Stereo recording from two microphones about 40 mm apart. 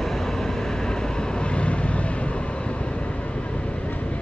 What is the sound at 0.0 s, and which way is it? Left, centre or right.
Vehicle, centre.